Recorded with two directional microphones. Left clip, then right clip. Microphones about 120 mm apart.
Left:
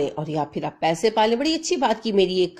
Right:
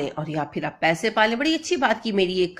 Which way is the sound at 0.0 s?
40° left (ahead or behind).